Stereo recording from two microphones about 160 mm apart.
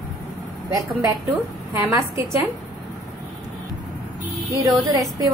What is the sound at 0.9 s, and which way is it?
A woman's voice, 10° right (ahead or behind).